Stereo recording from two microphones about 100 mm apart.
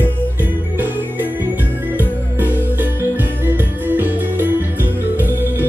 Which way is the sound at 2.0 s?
20° right (ahead or behind).